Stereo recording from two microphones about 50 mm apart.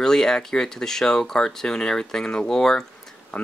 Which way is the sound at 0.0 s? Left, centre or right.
Centre.